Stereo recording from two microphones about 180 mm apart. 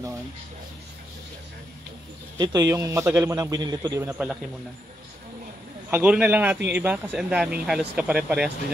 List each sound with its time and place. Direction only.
2.3 s a man's voice: 20° right (ahead or behind)
5.9 s speech: 10° right (ahead or behind)